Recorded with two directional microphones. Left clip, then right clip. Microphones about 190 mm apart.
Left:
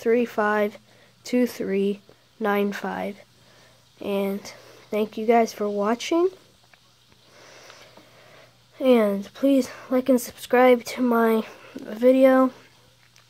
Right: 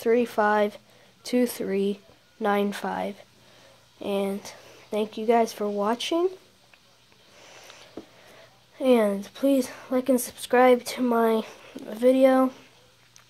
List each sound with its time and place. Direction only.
0.0 s speech: 15° left (ahead or behind)
7.3 s a sound: 20° left (ahead or behind)
8.7 s speech: 15° left (ahead or behind)